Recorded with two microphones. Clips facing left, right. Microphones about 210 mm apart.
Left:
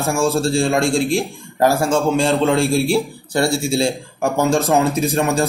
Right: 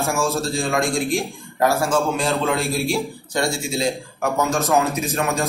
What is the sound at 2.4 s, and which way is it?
A man's voice, 30° left (ahead or behind).